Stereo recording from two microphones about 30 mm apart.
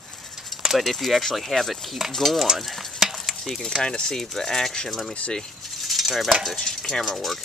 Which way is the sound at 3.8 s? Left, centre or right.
Left.